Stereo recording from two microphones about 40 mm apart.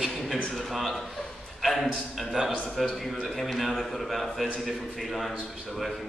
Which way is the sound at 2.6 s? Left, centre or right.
Centre.